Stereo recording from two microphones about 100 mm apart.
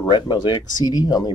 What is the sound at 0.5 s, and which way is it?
Speech, 35° left (ahead or behind).